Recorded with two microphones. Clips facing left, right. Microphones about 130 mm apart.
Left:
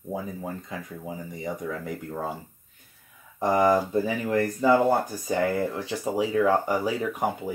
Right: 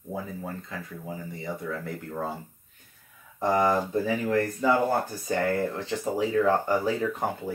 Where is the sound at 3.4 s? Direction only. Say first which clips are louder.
Left 2 dB; 15° left (ahead or behind).